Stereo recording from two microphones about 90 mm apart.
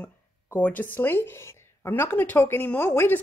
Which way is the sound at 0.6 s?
20° left (ahead or behind).